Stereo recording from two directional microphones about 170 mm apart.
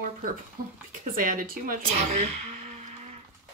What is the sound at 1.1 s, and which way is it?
Speech, 55° right (ahead or behind).